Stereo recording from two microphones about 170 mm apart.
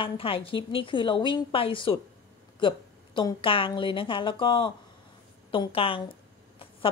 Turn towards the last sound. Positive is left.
turn(degrees=30)  # may be behind; listen again after turning